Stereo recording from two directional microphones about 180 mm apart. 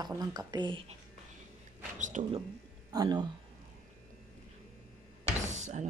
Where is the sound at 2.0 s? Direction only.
40° right (ahead or behind).